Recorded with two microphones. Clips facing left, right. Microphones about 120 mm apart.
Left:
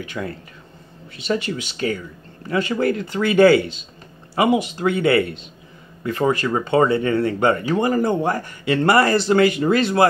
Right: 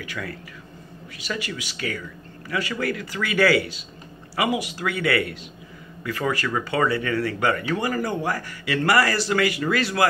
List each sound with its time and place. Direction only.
0.0 s speech: 25° left (ahead or behind)